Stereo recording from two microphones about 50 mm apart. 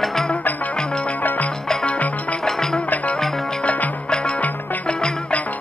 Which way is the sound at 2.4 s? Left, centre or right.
Centre.